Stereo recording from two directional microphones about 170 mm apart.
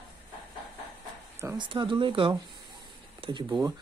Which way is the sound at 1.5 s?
30° right (ahead or behind).